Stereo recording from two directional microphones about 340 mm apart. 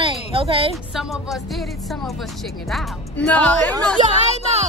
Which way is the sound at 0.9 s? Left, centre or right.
Centre.